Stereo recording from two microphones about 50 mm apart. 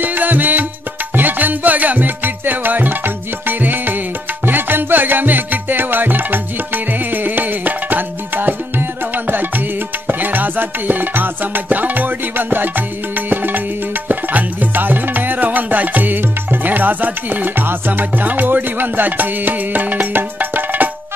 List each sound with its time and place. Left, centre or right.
0.0 s music: right